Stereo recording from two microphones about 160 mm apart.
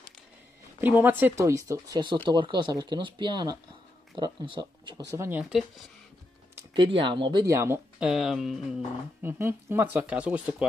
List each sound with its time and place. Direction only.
0.7 s speech: 10° right (ahead or behind)
5.4 s music: centre (ahead or behind)
6.7 s speech: 30° right (ahead or behind)
7.4 s speech: 15° right (ahead or behind)
8.0 s music: centre (ahead or behind)
9.2 s speech: 15° right (ahead or behind)